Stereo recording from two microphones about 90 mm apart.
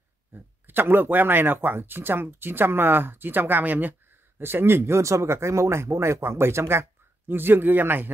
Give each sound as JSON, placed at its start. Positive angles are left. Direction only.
{"t": 0.3, "sound": "speech", "side_deg": -25}